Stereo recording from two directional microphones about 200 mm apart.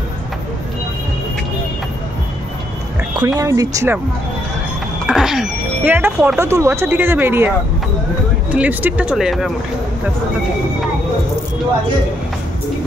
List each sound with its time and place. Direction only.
3.2 s speech: 15° right (ahead or behind)
5.0 s speech: centre (ahead or behind)